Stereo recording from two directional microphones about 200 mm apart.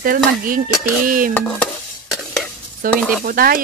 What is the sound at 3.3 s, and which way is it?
Speech, 45° right (ahead or behind).